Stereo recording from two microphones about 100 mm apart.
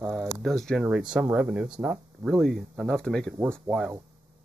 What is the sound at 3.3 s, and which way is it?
Speech, 25° right (ahead or behind).